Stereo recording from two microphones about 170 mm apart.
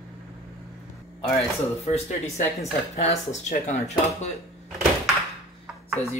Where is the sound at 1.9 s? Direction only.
40° left (ahead or behind).